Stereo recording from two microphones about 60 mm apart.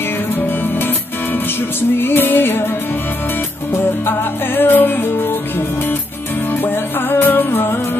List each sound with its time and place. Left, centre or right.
2.0 s music: left
3.7 s music: left
6.6 s music: left